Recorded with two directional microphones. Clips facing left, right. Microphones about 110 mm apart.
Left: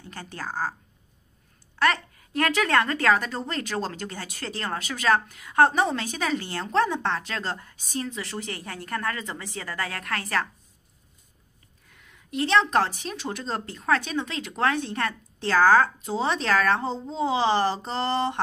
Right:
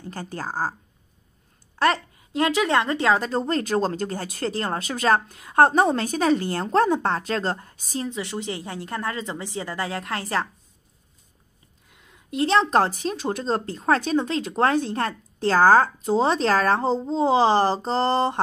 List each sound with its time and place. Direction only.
0.0 s a woman's voice: 35° right (ahead or behind)
1.8 s a woman's voice: 25° right (ahead or behind)
11.9 s a woman's voice: 20° right (ahead or behind); by 18.4 s 35° right (ahead or behind)